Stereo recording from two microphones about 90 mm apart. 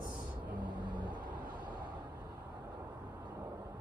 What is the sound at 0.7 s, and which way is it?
Vehicle, 60° right (ahead or behind).